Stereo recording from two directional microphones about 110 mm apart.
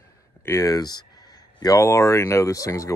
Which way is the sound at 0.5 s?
30° left (ahead or behind).